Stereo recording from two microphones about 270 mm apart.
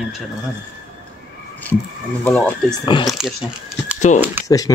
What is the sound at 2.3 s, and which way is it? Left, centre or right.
Speech, centre.